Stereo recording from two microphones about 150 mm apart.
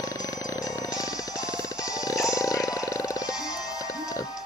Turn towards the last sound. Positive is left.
turn(degrees=20)  # may be behind; listen again after turning